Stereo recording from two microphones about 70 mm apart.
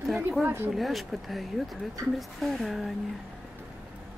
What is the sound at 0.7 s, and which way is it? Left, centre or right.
Speech, centre.